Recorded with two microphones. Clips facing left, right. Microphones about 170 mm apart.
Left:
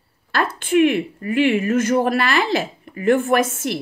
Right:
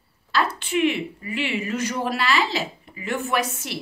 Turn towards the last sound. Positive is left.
turn(degrees=50)  # may be behind; listen again after turning